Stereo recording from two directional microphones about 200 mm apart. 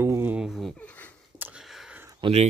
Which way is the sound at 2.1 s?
25° right (ahead or behind).